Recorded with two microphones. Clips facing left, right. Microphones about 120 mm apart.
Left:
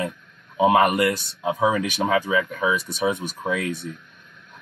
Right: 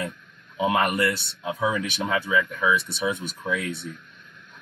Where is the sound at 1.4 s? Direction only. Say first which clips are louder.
Left 5 dB; 25° left (ahead or behind).